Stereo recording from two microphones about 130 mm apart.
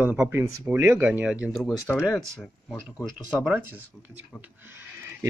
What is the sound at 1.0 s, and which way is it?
Speech, 10° right (ahead or behind).